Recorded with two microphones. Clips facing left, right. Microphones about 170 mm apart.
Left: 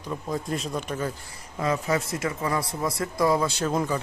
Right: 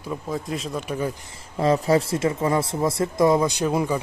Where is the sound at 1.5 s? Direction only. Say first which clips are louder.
Right 6 dB; 30° right (ahead or behind).